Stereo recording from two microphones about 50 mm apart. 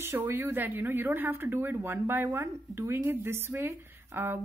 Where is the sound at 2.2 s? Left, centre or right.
Right.